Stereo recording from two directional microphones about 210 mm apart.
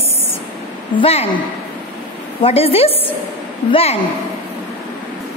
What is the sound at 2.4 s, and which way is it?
A woman's voice, 30° left (ahead or behind).